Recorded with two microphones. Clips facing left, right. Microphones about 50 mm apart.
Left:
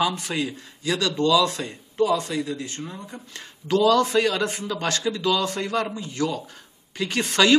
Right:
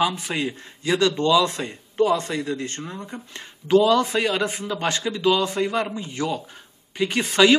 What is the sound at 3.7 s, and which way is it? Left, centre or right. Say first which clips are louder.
A man's voice: right 2 dB; centre.